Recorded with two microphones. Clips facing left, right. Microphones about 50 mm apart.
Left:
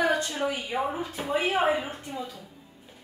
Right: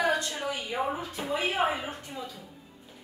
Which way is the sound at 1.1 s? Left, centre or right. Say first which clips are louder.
Left 3 dB; centre.